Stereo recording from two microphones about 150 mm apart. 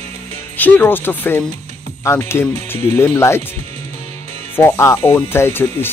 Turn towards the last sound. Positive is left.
turn(degrees=15)  # may be behind; listen again after turning